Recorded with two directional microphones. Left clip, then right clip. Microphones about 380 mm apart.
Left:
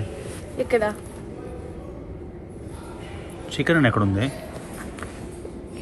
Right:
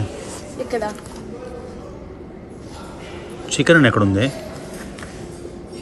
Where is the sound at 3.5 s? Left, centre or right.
Centre.